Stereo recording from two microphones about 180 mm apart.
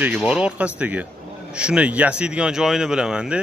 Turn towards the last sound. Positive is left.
turn(degrees=-5)  # may be behind; listen again after turning